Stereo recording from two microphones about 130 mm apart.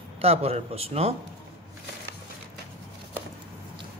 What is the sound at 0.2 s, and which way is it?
Speech, 50° right (ahead or behind).